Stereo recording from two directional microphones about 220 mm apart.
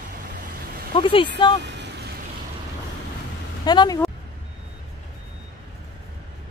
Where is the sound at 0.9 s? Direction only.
20° left (ahead or behind).